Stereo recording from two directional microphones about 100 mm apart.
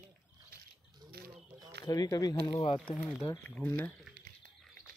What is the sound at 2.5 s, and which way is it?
Speech, 60° left (ahead or behind).